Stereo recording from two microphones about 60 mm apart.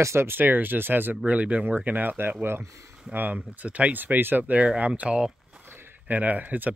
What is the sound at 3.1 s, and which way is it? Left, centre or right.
Speech, right.